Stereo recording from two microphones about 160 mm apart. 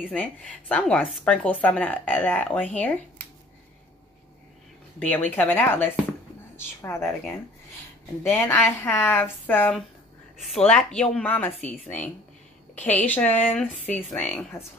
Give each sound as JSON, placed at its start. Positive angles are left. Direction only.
{"t": 0.0, "sound": "speech", "side_deg": 10}
{"t": 4.9, "sound": "speech", "side_deg": 10}
{"t": 8.2, "sound": "speech", "side_deg": 15}